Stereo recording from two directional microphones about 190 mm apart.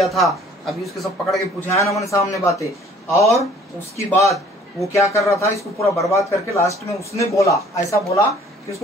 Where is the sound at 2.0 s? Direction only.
15° left (ahead or behind).